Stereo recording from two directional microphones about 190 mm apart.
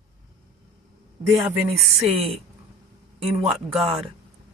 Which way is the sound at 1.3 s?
5° right (ahead or behind).